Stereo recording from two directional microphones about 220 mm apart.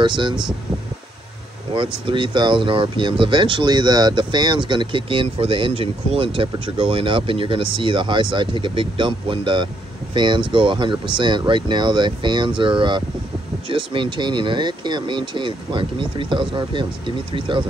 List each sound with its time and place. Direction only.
0.0 s speech: 20° right (ahead or behind)
1.8 s speech: 20° right (ahead or behind)